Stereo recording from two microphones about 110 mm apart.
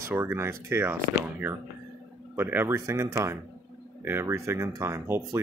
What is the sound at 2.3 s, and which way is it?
Speech, 20° right (ahead or behind).